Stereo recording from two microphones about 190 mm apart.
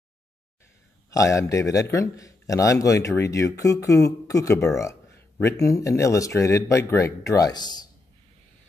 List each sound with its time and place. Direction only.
1.1 s a man's voice: 15° left (ahead or behind)